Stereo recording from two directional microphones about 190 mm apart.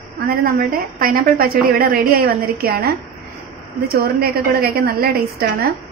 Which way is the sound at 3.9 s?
55° right (ahead or behind).